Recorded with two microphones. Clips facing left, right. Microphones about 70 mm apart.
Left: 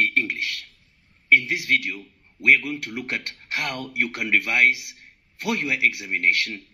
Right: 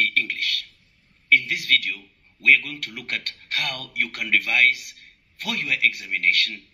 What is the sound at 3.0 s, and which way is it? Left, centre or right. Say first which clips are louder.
A man's voice: left 1 dB; left.